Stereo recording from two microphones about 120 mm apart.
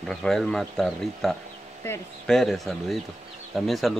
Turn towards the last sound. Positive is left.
turn(degrees=0)  # may be behind; listen again after turning